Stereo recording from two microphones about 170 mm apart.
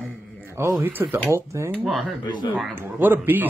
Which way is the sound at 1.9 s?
Centre (ahead or behind).